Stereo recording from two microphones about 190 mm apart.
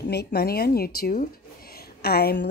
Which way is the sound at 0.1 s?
55° left (ahead or behind).